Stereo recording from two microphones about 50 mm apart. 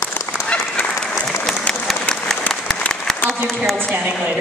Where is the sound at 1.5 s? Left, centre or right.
Centre.